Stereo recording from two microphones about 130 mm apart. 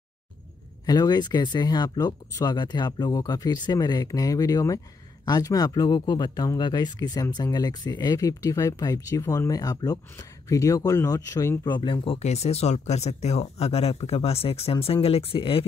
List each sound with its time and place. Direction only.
0.8 s speech: 30° left (ahead or behind)
11.6 s speech: 35° left (ahead or behind)